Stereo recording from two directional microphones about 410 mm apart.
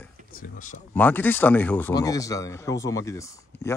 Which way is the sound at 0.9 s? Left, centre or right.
Centre.